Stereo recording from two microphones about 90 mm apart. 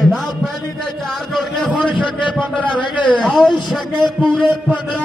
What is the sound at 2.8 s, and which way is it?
Speech, 60° left (ahead or behind).